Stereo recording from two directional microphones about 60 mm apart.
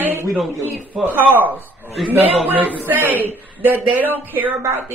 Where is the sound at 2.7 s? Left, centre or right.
Left.